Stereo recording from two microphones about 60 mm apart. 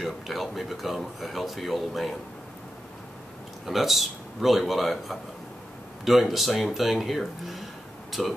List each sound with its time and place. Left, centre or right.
0.0 s speech: centre
3.6 s speech: centre